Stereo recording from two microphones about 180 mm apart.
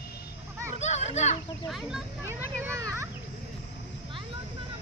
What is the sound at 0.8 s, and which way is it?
Children playing, 40° left (ahead or behind).